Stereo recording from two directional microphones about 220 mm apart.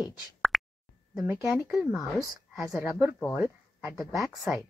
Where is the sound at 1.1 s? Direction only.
5° right (ahead or behind).